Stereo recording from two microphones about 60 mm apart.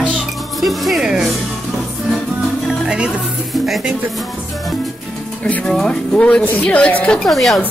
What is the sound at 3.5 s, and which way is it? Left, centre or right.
Speech, centre.